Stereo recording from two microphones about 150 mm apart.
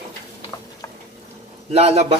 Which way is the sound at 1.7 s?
40° right (ahead or behind).